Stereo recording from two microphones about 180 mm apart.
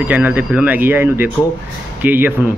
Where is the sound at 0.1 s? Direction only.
10° right (ahead or behind).